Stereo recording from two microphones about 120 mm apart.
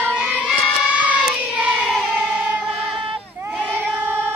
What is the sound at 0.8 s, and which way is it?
Child singing, 10° right (ahead or behind).